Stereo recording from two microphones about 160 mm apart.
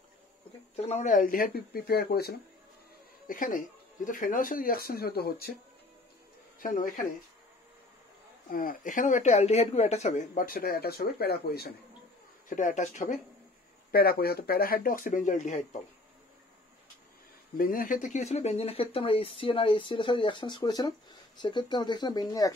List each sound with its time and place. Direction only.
0.7 s speech: 45° left (ahead or behind); by 2.3 s 75° left (ahead or behind)
3.3 s speech: 60° left (ahead or behind); by 5.6 s 75° left (ahead or behind)
6.6 s speech: 60° left (ahead or behind)
8.5 s speech: 60° left (ahead or behind); by 11.7 s 80° left
12.4 s speech: 50° left (ahead or behind)
13.9 s speech: 70° left (ahead or behind); by 15.8 s 50° left (ahead or behind)
17.6 s speech: 60° left (ahead or behind); by 22.5 s 25° left (ahead or behind)